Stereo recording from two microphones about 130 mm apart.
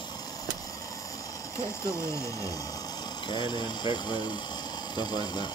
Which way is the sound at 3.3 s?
35° left (ahead or behind).